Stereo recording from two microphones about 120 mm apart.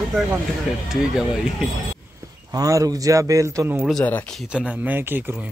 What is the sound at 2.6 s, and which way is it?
Speech, 30° right (ahead or behind).